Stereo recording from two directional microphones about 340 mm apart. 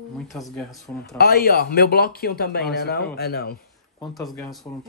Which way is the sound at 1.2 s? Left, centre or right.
Left.